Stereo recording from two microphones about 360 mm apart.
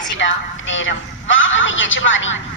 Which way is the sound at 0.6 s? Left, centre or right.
Left.